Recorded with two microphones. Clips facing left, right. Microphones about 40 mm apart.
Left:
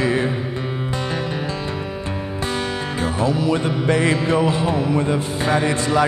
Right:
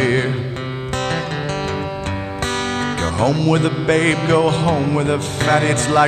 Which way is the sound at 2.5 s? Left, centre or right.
Right.